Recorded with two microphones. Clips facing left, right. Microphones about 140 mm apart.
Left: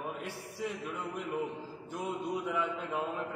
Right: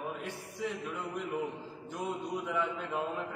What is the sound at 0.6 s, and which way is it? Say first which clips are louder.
A man's voice: right 1 dB; centre (ahead or behind).